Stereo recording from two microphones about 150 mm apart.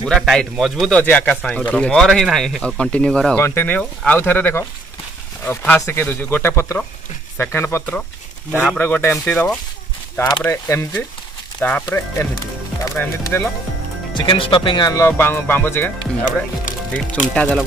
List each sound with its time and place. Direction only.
0.0 s speech: centre (ahead or behind)
12.9 s speech: 15° left (ahead or behind)
14.1 s speech: 35° left (ahead or behind)
15.0 s speech: 15° left (ahead or behind)
16.9 s speech: 10° left (ahead or behind)